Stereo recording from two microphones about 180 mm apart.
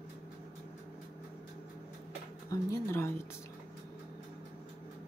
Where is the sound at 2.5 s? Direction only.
20° left (ahead or behind).